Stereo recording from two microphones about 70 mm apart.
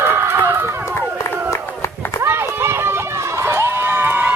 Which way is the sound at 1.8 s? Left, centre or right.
Left.